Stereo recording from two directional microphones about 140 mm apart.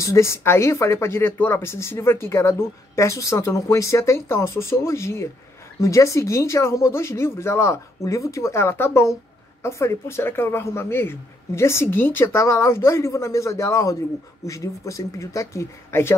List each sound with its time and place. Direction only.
0.0 s speech: 20° left (ahead or behind)